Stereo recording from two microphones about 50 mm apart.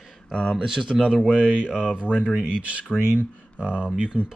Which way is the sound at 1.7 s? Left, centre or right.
Centre.